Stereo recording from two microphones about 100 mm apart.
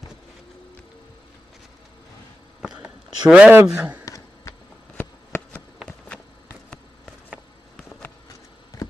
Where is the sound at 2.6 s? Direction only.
5° right (ahead or behind).